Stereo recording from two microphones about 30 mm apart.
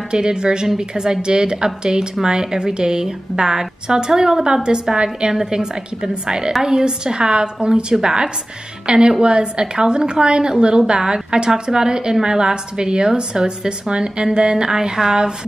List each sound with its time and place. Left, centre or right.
0.1 s a woman's voice: right